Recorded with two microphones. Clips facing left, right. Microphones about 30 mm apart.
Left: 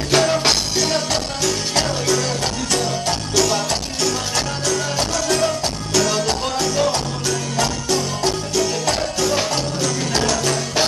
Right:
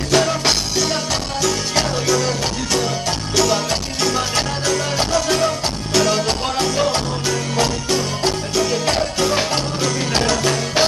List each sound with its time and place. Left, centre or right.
0.1 s music: centre
4.6 s music: centre